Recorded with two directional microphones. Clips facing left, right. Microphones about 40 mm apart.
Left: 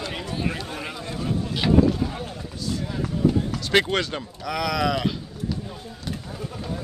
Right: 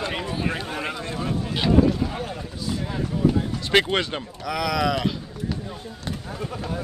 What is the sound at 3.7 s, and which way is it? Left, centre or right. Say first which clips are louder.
Speech: right 1 dB; centre.